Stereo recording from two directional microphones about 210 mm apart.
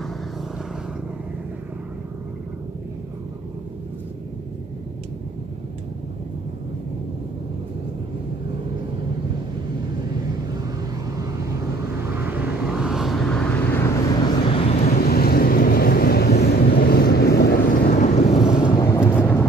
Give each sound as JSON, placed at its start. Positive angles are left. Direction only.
{"t": 12.1, "sound": "vehicle", "side_deg": -10}
{"t": 14.5, "sound": "vehicle", "side_deg": 30}
{"t": 14.9, "sound": "vehicle", "side_deg": 45}
{"t": 18.0, "sound": "vehicle", "side_deg": 20}